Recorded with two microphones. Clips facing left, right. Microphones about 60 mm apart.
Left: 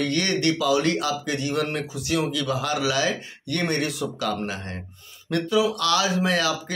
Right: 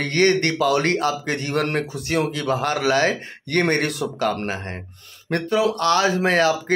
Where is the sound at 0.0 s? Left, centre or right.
Right.